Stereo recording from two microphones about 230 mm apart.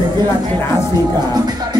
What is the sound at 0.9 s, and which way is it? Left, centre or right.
Music, centre.